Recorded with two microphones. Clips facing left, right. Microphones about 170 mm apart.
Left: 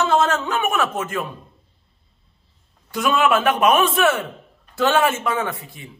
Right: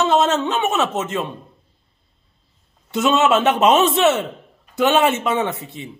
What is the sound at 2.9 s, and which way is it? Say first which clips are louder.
Speech: right 2 dB; 25° right (ahead or behind).